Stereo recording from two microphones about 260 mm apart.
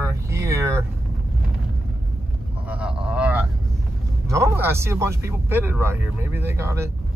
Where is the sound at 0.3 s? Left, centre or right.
Centre.